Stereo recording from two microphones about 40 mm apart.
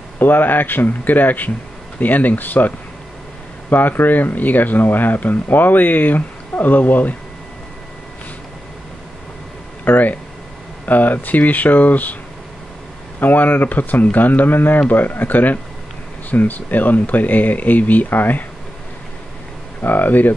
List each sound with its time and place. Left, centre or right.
0.2 s speech: left
3.7 s speech: left
9.8 s speech: left
13.2 s speech: left
19.8 s speech: left